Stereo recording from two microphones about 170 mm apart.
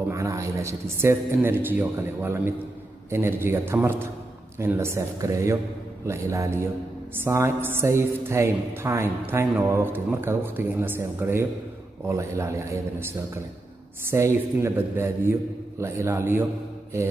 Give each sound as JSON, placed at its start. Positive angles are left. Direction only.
{"t": 0.1, "sound": "a man's voice", "side_deg": -20}